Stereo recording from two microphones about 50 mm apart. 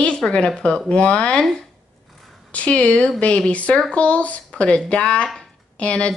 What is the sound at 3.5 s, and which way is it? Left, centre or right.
Speech, left.